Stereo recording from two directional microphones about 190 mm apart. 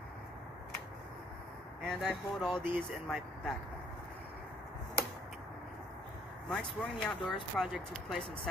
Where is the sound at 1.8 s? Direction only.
Centre (ahead or behind).